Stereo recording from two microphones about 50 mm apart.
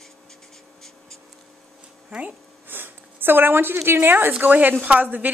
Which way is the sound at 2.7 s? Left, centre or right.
Right.